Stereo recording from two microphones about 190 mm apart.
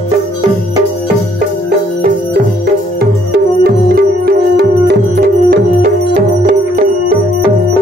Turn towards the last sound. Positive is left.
turn(degrees=-55)  # may be behind; listen again after turning